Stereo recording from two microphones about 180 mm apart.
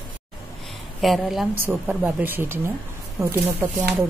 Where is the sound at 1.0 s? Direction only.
Centre (ahead or behind).